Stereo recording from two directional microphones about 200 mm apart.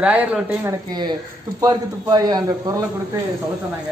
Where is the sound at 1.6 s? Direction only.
20° right (ahead or behind).